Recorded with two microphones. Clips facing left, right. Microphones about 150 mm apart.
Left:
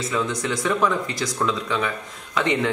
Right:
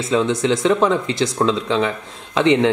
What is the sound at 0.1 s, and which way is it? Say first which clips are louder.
A man's voice: right 10 dB; 25° right (ahead or behind).